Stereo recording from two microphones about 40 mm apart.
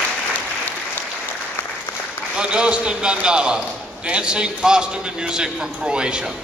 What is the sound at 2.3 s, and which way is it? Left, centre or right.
A man's voice, right.